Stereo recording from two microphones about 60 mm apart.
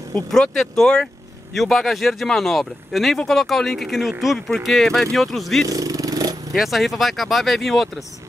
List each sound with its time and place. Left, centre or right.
0.3 s speech: centre
5.7 s vehicle: right
6.5 s speech: centre